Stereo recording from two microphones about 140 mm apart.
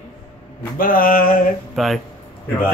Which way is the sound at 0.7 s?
90° left.